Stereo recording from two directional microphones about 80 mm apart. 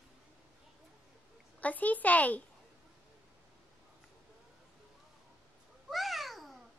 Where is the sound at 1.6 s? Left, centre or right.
Centre.